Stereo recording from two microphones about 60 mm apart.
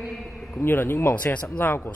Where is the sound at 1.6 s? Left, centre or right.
Left.